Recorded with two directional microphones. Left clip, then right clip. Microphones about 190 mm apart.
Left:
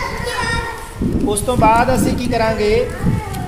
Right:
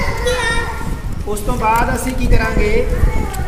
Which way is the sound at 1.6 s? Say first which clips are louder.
Left 2 dB; 55° left (ahead or behind).